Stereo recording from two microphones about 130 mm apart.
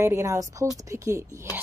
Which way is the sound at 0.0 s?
25° right (ahead or behind).